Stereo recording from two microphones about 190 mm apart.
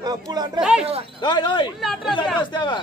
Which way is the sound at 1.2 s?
25° left (ahead or behind).